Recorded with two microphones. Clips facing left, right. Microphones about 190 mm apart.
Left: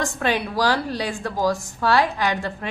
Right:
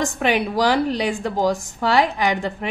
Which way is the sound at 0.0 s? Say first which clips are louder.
Right 3 dB; 15° right (ahead or behind).